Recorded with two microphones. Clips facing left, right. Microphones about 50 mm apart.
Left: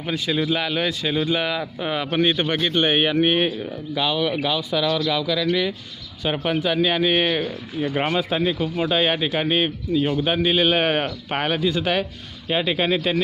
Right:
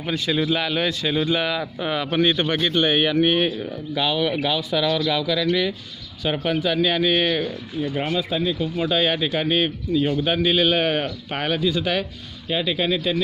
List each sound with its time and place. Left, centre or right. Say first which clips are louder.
0.3 s a man's voice: even; centre
3.4 s speech: even; centre
6.4 s a man's voice: even; centre
7.8 s a man's voice: left 2 dB; left
8.7 s a man's voice: right 1 dB; left